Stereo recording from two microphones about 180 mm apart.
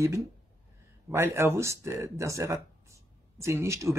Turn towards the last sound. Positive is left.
turn(degrees=-15)  # may be behind; listen again after turning